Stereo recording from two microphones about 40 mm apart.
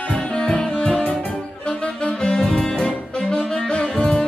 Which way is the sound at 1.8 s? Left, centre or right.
Left.